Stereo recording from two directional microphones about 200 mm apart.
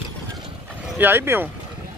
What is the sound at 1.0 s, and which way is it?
Speech, 10° right (ahead or behind).